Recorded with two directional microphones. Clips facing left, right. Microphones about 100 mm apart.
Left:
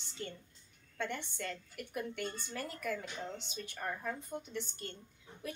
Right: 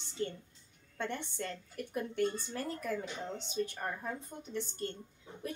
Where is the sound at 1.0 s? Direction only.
35° right (ahead or behind).